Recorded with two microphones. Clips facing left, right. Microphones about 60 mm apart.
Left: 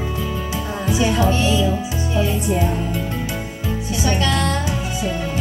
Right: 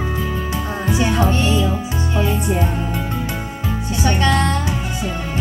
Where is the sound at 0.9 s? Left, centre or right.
Right.